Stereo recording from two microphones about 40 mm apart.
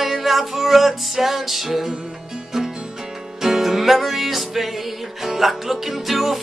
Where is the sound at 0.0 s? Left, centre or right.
Centre.